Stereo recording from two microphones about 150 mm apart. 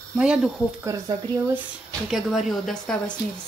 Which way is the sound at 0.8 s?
20° right (ahead or behind).